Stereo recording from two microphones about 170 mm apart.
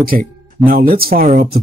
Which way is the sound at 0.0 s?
60° right (ahead or behind).